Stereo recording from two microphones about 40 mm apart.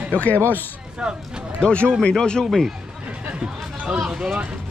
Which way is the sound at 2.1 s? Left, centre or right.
Centre.